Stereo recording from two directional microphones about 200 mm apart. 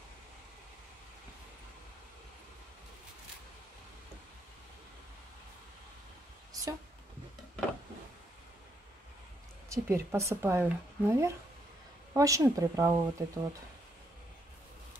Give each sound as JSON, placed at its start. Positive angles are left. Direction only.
{"t": 9.7, "sound": "speech", "side_deg": -15}